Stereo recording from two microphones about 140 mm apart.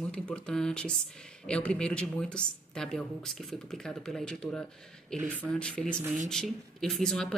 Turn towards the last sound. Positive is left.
turn(degrees=5)  # may be behind; listen again after turning